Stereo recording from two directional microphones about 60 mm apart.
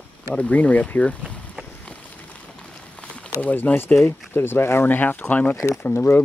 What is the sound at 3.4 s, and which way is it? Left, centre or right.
Speech, left.